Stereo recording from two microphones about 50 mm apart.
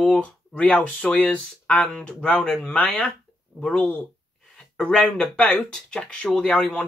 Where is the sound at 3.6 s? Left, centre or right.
Centre.